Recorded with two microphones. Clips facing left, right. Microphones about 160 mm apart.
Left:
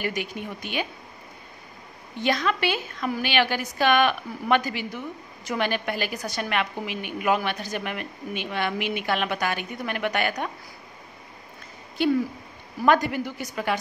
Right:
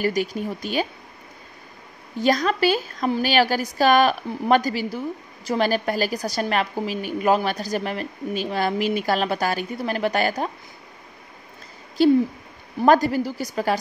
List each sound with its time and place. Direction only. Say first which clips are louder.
0.0 s a woman's voice: right 7 dB; 35° right (ahead or behind)
2.1 s a woman's voice: right 4 dB; 40° right (ahead or behind)
12.0 s a woman's voice: right 6 dB; 35° right (ahead or behind)